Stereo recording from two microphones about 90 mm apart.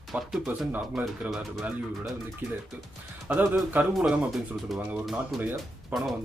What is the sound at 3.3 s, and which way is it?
Speech, 20° right (ahead or behind).